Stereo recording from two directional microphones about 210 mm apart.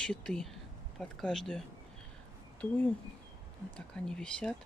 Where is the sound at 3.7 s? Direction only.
5° left (ahead or behind).